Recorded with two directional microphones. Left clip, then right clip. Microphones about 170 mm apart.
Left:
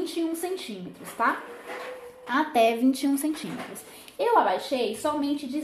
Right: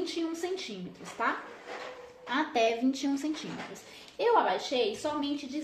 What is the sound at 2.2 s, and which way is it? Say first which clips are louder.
A woman's voice: left 6 dB; 20° left (ahead or behind).